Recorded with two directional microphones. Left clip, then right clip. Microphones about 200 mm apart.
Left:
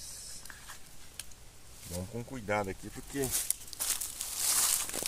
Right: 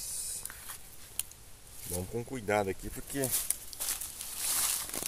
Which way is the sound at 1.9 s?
35° right (ahead or behind).